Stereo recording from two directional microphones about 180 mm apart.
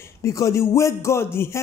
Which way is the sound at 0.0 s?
15° left (ahead or behind).